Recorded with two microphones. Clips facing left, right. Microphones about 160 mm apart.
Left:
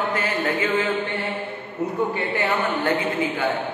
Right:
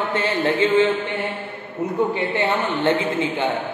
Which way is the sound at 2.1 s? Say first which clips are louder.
Right 2 dB; 25° right (ahead or behind).